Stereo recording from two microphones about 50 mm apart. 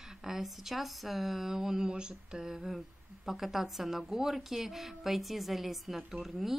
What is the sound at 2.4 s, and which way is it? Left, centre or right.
A woman's voice, centre.